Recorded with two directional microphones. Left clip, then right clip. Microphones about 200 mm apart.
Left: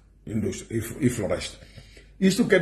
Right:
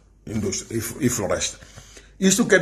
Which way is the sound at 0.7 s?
Centre (ahead or behind).